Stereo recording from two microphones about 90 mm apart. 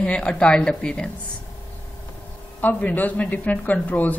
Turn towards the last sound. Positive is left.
turn(degrees=20)  # may be behind; listen again after turning